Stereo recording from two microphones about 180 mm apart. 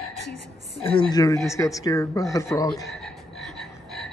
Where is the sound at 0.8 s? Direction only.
30° left (ahead or behind).